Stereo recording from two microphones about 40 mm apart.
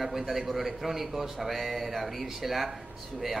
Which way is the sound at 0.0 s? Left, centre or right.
Centre.